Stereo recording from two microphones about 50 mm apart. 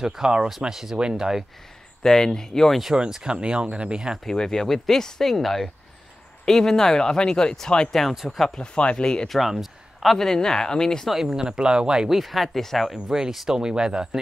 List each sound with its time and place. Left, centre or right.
0.0 s speech: centre
2.0 s speech: centre
2.8 s speech: centre
4.2 s speech: centre
8.1 s speech: centre
8.5 s speech: centre
9.3 s a sound: centre
10.1 s speech: centre
11.1 s speech: centre
12.2 s speech: centre
12.9 s speech: centre